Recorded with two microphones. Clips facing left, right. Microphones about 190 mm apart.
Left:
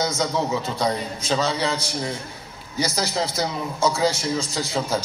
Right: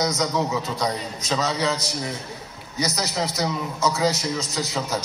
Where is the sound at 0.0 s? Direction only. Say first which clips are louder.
Even; 30° left (ahead or behind).